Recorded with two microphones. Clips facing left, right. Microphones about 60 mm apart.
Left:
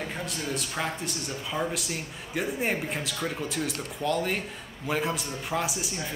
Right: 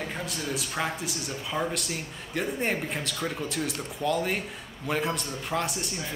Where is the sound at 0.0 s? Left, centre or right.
Centre.